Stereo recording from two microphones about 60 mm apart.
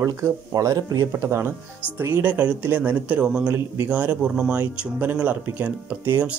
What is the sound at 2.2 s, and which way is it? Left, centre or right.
Speech, right.